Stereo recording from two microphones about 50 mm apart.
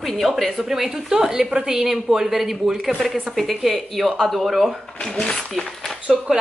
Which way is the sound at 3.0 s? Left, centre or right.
Centre.